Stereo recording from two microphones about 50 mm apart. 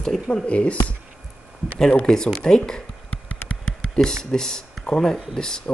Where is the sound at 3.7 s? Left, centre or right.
Centre.